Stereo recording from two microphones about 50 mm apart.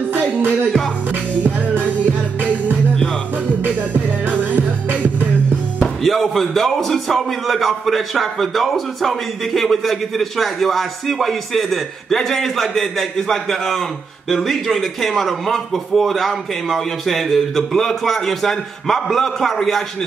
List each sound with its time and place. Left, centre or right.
0.1 s music: right
6.0 s a man's voice: centre